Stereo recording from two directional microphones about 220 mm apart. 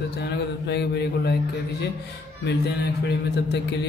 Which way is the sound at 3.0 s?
50° left (ahead or behind).